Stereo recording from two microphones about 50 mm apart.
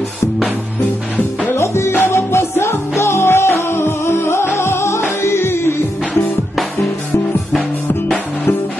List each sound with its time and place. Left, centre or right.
1.5 s music: left
2.0 s music: left